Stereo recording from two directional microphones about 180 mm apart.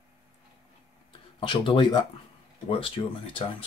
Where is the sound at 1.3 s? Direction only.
30° left (ahead or behind).